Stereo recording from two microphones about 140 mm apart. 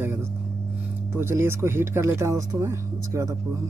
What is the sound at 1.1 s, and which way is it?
Speech, 15° right (ahead or behind).